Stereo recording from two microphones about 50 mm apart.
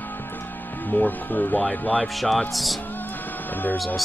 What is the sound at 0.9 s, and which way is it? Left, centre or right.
Speech, left.